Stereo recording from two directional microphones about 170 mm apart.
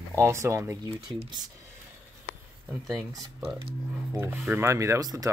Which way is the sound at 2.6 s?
Centre (ahead or behind).